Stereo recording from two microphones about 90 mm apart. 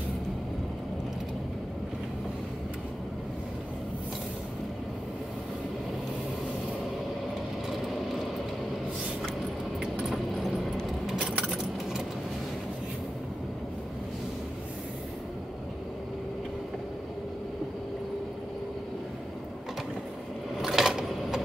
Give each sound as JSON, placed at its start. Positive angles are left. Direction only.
{"t": 9.8, "sound": "vehicle", "side_deg": -10}
{"t": 10.1, "sound": "keys jangling", "side_deg": 0}
{"t": 20.6, "sound": "a sound", "side_deg": -5}